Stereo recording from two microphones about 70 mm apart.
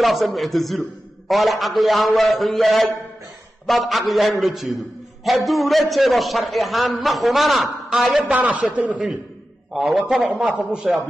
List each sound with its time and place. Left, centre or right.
0.0 s a man's voice: centre
8.3 s a man's voice: centre
9.7 s a man's voice: centre